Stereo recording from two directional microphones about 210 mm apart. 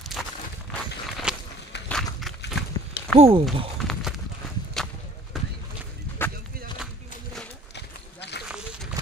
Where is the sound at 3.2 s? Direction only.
25° right (ahead or behind).